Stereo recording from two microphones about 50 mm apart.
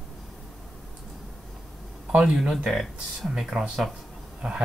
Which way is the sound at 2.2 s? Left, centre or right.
Centre.